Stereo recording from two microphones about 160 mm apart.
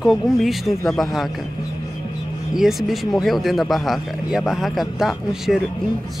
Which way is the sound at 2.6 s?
Centre (ahead or behind).